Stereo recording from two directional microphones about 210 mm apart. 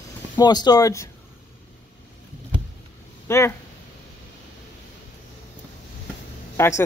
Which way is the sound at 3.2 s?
15° left (ahead or behind).